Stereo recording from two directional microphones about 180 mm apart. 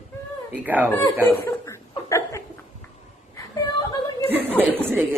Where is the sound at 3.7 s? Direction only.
25° left (ahead or behind).